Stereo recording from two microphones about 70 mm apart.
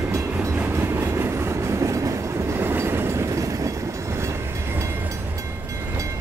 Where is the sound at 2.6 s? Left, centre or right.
Right.